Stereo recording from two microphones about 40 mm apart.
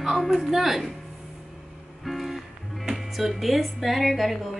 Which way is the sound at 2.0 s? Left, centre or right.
Centre.